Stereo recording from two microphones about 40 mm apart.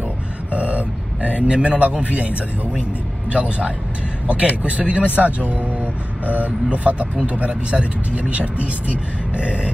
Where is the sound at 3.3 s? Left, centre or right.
Right.